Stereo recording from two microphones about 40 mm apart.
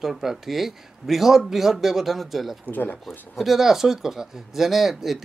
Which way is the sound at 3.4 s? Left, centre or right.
Centre.